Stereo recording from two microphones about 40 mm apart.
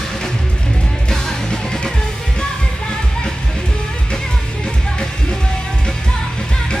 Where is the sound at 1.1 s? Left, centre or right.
Centre.